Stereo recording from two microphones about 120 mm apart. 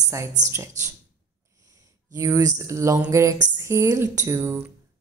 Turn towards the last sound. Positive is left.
turn(degrees=-20)  # may be behind; listen again after turning